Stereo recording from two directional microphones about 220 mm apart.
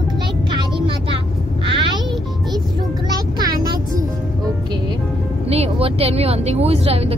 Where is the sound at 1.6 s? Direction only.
25° right (ahead or behind).